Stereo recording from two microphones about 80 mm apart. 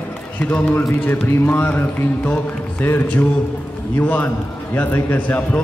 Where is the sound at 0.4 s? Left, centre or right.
Centre.